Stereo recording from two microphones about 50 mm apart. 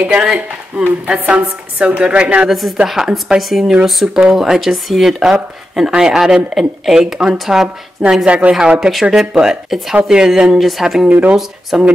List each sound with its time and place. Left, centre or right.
0.0 s a woman's voice: right
10.6 s speech: centre
11.1 s a woman's voice: right
11.7 s speech: centre